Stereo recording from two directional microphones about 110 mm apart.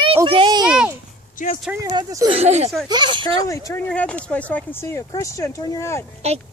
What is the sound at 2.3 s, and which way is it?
Speech, 75° right (ahead or behind).